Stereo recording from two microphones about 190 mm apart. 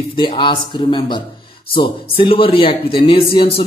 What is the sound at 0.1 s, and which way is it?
Speech, 25° left (ahead or behind).